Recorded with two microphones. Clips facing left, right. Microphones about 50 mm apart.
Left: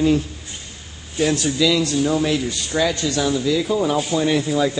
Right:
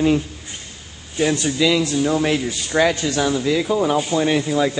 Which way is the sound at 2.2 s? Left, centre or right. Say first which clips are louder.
Right 1 dB; right.